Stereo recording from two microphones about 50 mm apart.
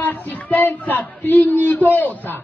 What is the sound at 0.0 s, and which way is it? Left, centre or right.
A man's voice, left.